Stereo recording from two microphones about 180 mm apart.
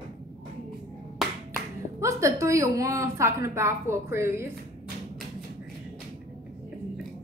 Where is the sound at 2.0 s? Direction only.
15° right (ahead or behind).